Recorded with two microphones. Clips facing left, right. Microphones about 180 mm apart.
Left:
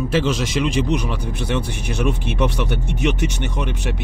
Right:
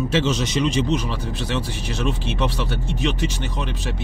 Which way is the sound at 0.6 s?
15° left (ahead or behind).